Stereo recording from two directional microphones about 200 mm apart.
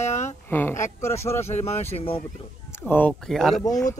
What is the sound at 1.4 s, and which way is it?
Speech, 30° left (ahead or behind).